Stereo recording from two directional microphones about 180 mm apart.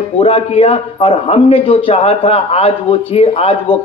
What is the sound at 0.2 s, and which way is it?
A man's voice, 35° left (ahead or behind).